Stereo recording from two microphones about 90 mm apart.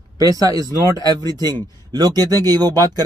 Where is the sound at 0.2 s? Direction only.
45° right (ahead or behind).